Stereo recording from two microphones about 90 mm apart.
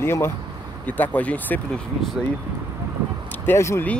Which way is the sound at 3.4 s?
30° left (ahead or behind).